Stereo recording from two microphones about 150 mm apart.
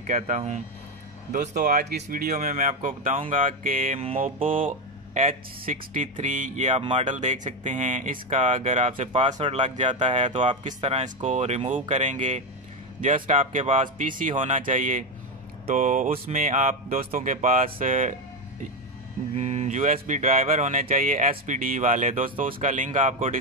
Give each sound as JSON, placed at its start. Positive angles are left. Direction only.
{"t": 0.0, "sound": "speech", "side_deg": -60}
{"t": 1.3, "sound": "speech", "side_deg": -80}
{"t": 4.4, "sound": "speech", "side_deg": -35}
{"t": 5.1, "sound": "speech", "side_deg": -60}
{"t": 6.8, "sound": "speech", "side_deg": -40}
{"t": 7.1, "sound": "speech", "side_deg": -55}
{"t": 9.3, "sound": "speech", "side_deg": -35}
{"t": 9.8, "sound": "speech", "side_deg": -55}
{"t": 10.3, "sound": "speech", "side_deg": -35}
{"t": 10.6, "sound": "speech", "side_deg": -50}
{"t": 19.3, "sound": "speech", "side_deg": -50}